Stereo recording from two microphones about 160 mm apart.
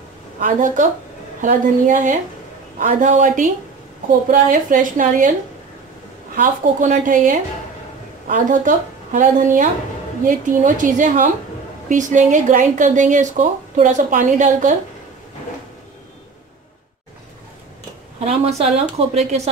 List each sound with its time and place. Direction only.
0.4 s a woman's voice: 55° right (ahead or behind)
6.3 s a woman's voice: 55° right (ahead or behind)
18.2 s a woman's voice: 45° right (ahead or behind)